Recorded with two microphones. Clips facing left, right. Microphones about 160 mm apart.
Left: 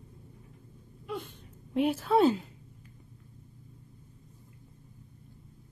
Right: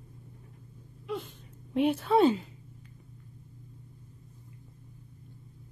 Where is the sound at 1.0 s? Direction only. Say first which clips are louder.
Right 2 dB; centre (ahead or behind).